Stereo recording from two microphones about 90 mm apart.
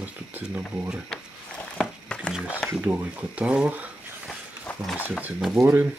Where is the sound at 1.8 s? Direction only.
10° left (ahead or behind).